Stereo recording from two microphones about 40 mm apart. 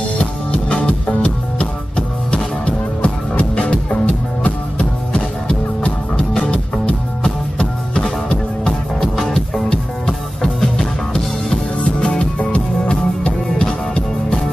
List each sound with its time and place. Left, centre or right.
0.2 s music: left
7.2 s music: left
11.8 s music: left